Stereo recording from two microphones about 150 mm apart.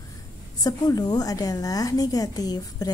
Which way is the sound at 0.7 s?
25° left (ahead or behind).